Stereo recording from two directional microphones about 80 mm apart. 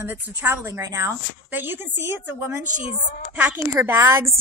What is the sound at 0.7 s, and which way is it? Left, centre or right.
Speech, right.